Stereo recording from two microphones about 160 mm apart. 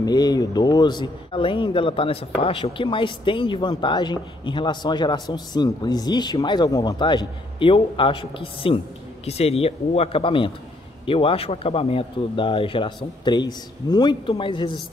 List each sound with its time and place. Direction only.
0.0 s a man's voice: 25° left (ahead or behind)